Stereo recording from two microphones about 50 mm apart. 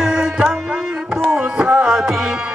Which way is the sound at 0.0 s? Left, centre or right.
Centre.